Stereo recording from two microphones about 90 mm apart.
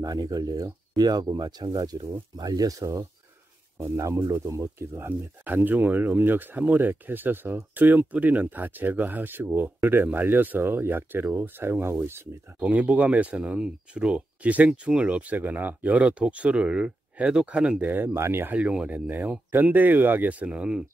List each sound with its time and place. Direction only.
0.0 s speech: 45° right (ahead or behind); by 20.8 s 10° right (ahead or behind)